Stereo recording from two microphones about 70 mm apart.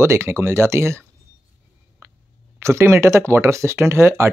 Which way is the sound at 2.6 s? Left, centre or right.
Right.